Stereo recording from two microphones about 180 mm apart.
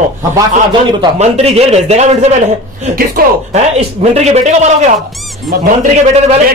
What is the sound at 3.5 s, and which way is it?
A man's voice, 35° right (ahead or behind).